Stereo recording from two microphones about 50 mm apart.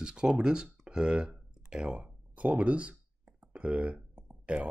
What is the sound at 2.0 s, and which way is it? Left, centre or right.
Speech, right.